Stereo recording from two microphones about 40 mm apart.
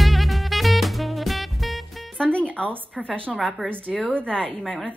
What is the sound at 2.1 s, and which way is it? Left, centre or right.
Music, left.